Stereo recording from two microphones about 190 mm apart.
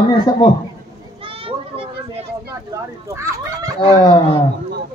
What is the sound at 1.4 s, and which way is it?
Children playing, 30° right (ahead or behind).